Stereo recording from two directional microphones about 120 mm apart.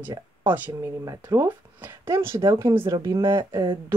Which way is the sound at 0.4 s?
15° right (ahead or behind).